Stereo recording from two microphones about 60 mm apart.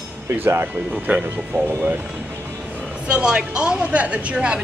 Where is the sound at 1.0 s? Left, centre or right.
Right.